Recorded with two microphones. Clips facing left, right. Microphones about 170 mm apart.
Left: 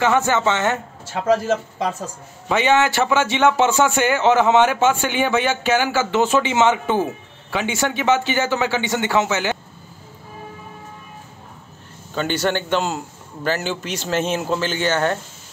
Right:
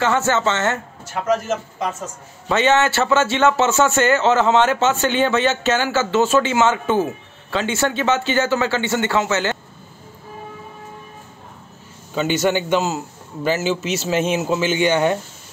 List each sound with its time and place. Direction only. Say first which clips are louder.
0.0 s a man's voice: left 1 dB; 15° left (ahead or behind)
1.0 s a man's voice: left 2 dB; 30° left (ahead or behind)
2.4 s a man's voice: right 1 dB; 10° left (ahead or behind)
12.1 s a man's voice: right 2 dB; 5° right (ahead or behind)